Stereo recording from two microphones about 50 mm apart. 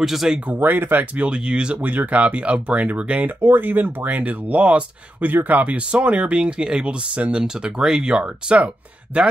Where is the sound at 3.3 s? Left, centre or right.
Right.